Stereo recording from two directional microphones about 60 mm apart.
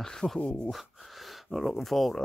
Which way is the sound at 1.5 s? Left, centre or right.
Centre.